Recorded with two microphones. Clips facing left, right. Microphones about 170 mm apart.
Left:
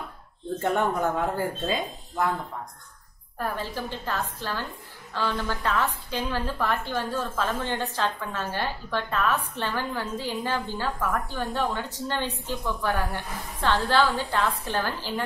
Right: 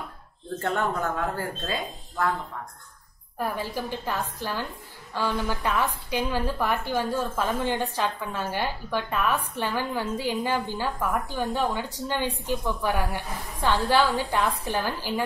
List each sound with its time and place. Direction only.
0.6 s speech: 15° left (ahead or behind)
3.3 s a woman's voice: 10° right (ahead or behind)